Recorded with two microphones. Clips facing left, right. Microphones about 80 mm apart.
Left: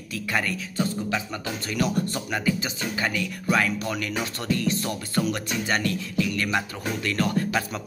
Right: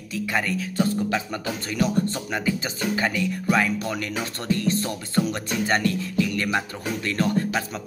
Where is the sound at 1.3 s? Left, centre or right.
Right.